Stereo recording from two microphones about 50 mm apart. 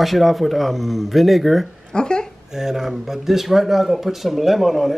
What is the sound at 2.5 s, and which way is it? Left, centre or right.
A woman's voice, centre.